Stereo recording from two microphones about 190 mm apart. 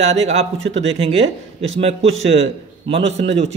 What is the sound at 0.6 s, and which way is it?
Speech, 75° right (ahead or behind).